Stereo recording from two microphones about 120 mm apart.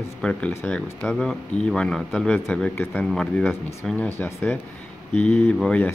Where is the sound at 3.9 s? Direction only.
20° left (ahead or behind).